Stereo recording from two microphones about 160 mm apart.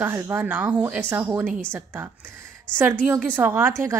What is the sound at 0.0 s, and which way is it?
A woman's voice, 15° right (ahead or behind).